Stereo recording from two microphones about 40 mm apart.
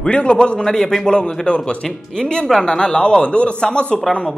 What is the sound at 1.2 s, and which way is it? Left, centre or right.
Speech, left.